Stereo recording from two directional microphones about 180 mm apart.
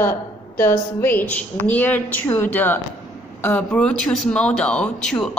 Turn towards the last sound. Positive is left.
turn(degrees=5)  # may be behind; listen again after turning